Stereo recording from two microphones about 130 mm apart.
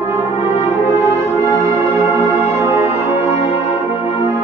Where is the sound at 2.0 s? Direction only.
25° right (ahead or behind).